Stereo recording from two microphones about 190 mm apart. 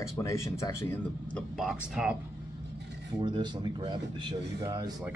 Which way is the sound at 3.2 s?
25° right (ahead or behind).